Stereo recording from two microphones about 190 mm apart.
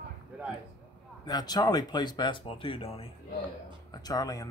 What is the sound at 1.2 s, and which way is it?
Speech, 20° left (ahead or behind).